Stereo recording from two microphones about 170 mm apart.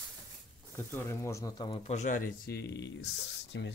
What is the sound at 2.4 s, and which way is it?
Speech, 75° left (ahead or behind).